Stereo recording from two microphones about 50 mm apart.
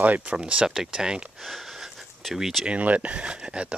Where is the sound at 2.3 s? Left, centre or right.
Centre.